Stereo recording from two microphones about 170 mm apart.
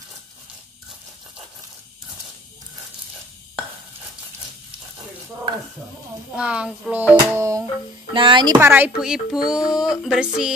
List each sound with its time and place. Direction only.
6.3 s speech: 5° right (ahead or behind)
8.1 s speech: 30° right (ahead or behind)
8.5 s speech: 10° right (ahead or behind)